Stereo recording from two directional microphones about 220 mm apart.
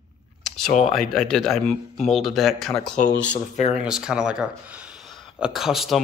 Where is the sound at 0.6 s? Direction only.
35° left (ahead or behind).